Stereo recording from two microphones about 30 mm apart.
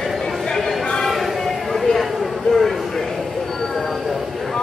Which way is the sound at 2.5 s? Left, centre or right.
Centre.